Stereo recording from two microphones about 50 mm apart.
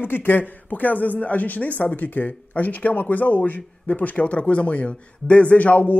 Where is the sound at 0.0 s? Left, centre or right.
Left.